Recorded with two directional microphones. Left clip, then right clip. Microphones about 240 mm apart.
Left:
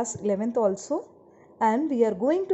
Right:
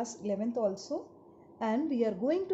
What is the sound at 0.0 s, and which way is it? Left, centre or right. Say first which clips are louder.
Speech: left 8 dB; left.